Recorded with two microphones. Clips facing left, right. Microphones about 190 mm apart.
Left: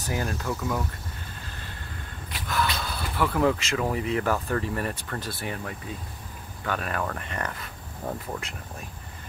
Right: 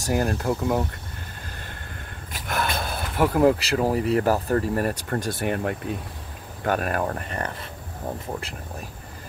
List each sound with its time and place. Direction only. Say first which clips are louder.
0.0 s speech: right 6 dB; 40° right (ahead or behind)
2.3 s speech: right 1 dB; 50° right (ahead or behind)
6.6 s speech: right 5 dB; 45° right (ahead or behind)